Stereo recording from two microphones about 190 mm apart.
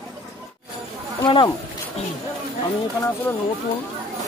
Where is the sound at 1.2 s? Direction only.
25° left (ahead or behind).